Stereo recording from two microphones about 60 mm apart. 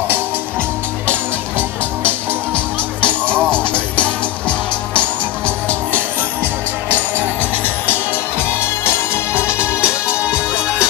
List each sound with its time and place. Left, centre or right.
2.0 s music: left
7.2 s music: right
9.3 s music: right